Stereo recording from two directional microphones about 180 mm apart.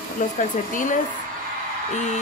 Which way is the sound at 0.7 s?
45° left (ahead or behind).